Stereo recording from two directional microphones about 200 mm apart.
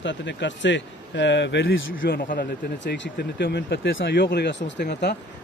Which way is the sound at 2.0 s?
50° left (ahead or behind).